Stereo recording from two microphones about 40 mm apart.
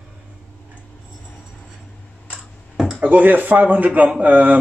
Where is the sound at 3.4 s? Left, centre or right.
Right.